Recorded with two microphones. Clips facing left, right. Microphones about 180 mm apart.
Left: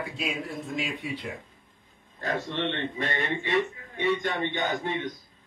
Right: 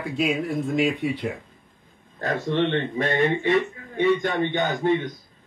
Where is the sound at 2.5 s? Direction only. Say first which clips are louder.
Right 7 dB; 50° right (ahead or behind).